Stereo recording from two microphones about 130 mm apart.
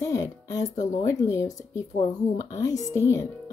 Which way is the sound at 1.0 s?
20° left (ahead or behind).